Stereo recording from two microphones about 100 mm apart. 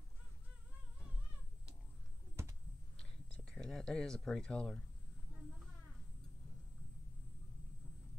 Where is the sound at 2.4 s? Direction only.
30° right (ahead or behind).